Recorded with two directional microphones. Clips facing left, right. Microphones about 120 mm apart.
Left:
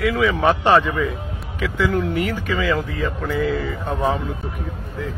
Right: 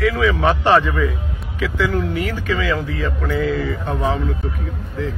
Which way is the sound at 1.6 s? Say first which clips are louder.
Right 1 dB; centre (ahead or behind).